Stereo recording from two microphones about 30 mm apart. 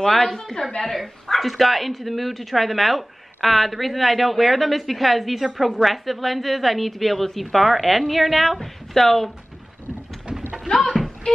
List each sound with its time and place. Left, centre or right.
0.1 s a woman's voice: centre
1.4 s speech: centre
11.3 s music: left